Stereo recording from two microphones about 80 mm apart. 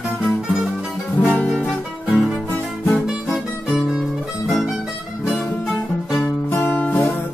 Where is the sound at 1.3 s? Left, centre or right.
Centre.